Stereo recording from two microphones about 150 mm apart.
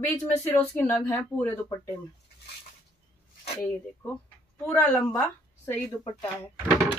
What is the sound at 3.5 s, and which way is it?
Speech, 10° left (ahead or behind).